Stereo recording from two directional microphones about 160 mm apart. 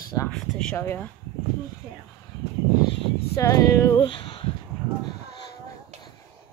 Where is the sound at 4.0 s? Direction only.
30° left (ahead or behind).